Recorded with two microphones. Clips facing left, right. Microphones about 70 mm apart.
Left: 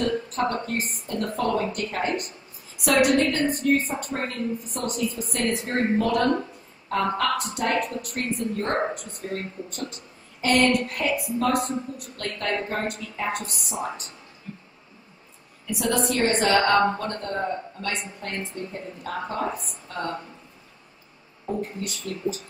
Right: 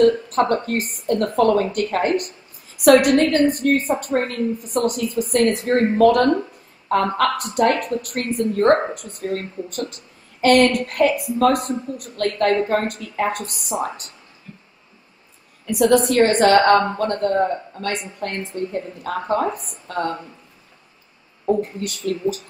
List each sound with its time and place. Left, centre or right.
0.0 s a woman's voice: right
15.6 s a woman's voice: right
21.5 s speech: right